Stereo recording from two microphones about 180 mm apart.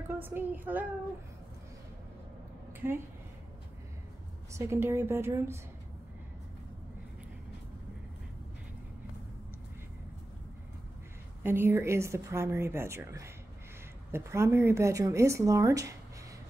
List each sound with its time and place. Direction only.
0.2 s a woman's voice: 10° right (ahead or behind)
2.8 s a woman's voice: 15° right (ahead or behind)
4.5 s a woman's voice: 15° right (ahead or behind)
11.4 s a woman's voice: 15° right (ahead or behind)